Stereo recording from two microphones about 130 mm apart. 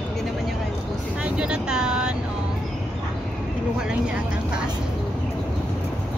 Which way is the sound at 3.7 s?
5° right (ahead or behind).